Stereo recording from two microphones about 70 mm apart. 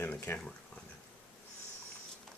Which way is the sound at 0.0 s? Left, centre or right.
Left.